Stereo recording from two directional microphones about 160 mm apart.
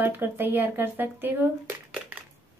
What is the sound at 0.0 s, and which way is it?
A woman's voice, 15° right (ahead or behind).